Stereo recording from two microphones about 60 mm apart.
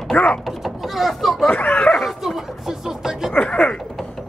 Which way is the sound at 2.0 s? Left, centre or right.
Centre.